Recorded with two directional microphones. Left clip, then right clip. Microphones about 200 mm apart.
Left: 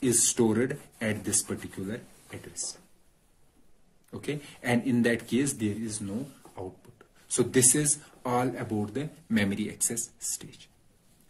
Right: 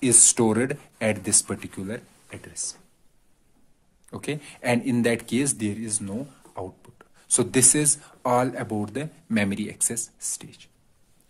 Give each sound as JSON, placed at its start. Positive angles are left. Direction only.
{"t": 0.0, "sound": "speech", "side_deg": -45}
{"t": 4.1, "sound": "speech", "side_deg": -40}